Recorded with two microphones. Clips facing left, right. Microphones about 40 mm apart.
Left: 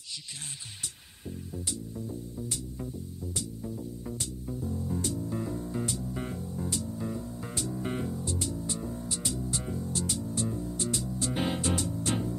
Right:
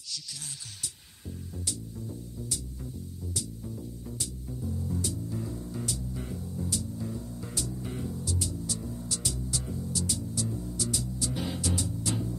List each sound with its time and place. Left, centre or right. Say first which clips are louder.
2.3 s music: left 2 dB; left
4.6 s music: left 1 dB; left
8.1 s music: left 1 dB; left